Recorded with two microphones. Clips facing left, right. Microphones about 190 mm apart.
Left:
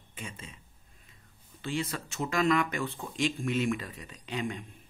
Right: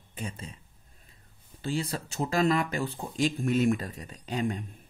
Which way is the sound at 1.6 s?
35° right (ahead or behind).